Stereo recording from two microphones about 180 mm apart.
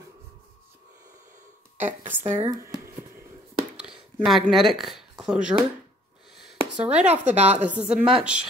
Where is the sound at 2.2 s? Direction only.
35° right (ahead or behind).